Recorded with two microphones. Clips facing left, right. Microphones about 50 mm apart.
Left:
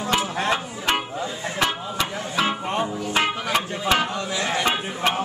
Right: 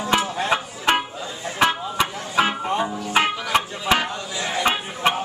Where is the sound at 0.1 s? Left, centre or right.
Centre.